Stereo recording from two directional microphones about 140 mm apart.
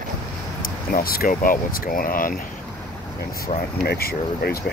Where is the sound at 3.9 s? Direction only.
90° left.